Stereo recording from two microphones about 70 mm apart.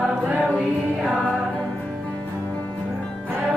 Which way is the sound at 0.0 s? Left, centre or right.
Centre.